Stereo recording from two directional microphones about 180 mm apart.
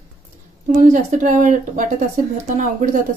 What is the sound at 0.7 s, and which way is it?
Speech, 45° right (ahead or behind).